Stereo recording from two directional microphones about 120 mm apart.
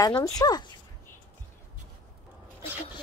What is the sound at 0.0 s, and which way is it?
Speech, 30° left (ahead or behind).